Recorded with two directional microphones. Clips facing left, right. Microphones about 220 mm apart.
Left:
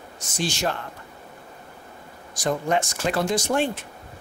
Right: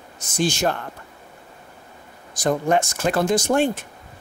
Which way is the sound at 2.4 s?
50° right (ahead or behind).